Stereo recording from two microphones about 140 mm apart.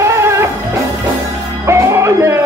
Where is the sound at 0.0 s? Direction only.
20° right (ahead or behind).